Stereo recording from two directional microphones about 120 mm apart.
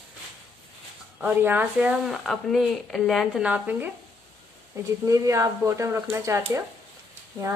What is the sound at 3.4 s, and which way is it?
Speech, 10° right (ahead or behind).